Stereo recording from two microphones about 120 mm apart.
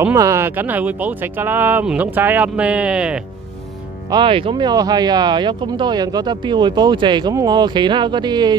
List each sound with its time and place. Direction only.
0.1 s speech: 25° right (ahead or behind); by 3.2 s 10° right (ahead or behind)
4.1 s speech: 45° right (ahead or behind)